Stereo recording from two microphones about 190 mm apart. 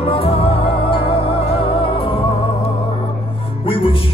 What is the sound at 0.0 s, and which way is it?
Music, 30° left (ahead or behind).